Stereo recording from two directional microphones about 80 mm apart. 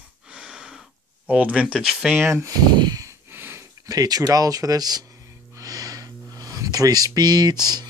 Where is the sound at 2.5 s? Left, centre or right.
Right.